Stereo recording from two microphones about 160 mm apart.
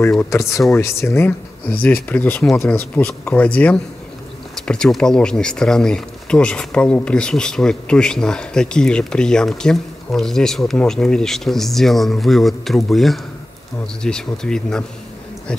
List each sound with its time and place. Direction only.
0.3 s speech: 20° left (ahead or behind)